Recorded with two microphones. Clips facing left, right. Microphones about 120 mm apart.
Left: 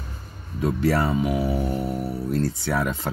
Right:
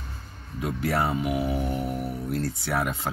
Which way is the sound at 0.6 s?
Centre (ahead or behind).